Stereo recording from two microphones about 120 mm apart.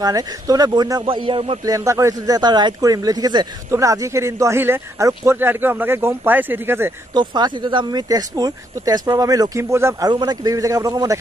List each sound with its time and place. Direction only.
0.0 s speech: 30° right (ahead or behind)
1.0 s speech: 45° right (ahead or behind)
1.6 s speech: 25° right (ahead or behind)
7.2 s speech: 35° right (ahead or behind)